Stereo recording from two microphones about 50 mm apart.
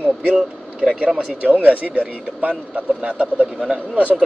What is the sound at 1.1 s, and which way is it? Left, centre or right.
Speech, right.